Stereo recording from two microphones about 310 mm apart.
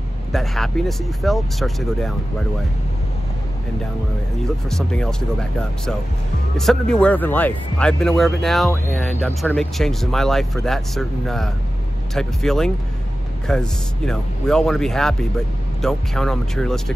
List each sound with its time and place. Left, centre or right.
0.3 s speech: centre
4.6 s speech: centre
6.5 s speech: centre